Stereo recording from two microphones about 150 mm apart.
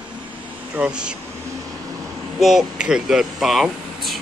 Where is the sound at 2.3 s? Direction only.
Centre (ahead or behind).